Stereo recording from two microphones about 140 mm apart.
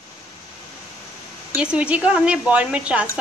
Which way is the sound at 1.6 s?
10° right (ahead or behind).